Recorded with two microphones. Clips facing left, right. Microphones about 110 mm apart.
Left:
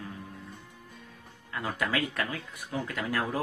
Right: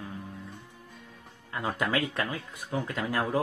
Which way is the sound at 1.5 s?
25° right (ahead or behind).